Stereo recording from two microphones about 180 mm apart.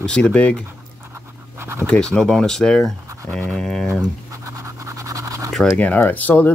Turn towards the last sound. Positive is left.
turn(degrees=10)  # may be behind; listen again after turning